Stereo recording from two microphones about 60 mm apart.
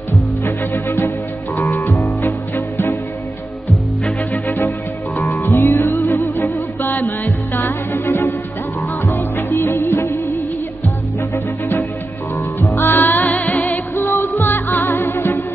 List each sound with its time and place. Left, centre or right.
0.5 s music: left
4.3 s music: left
5.7 s music: left
12.5 s music: left